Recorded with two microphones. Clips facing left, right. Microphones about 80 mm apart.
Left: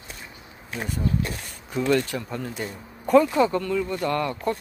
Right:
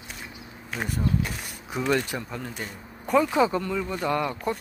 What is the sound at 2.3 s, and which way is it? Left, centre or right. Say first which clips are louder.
Speech: left 4 dB; centre.